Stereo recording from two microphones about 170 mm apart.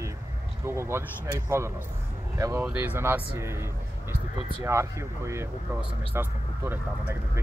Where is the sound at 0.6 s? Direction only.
15° right (ahead or behind).